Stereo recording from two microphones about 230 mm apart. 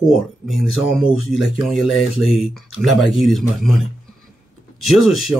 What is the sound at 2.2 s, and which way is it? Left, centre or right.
Speech, left.